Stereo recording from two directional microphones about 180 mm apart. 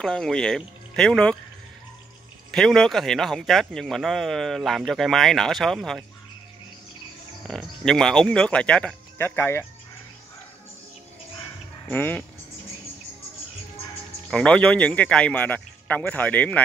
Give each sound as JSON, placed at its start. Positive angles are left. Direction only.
{"t": 0.0, "sound": "speech", "side_deg": 5}
{"t": 2.5, "sound": "speech", "side_deg": 5}
{"t": 7.4, "sound": "speech", "side_deg": 5}
{"t": 11.9, "sound": "a man's voice", "side_deg": 10}
{"t": 14.3, "sound": "a man's voice", "side_deg": 5}